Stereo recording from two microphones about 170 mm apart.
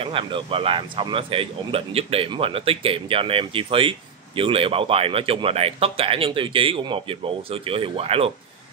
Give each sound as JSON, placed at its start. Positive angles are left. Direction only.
{"t": 0.0, "sound": "speech", "side_deg": -30}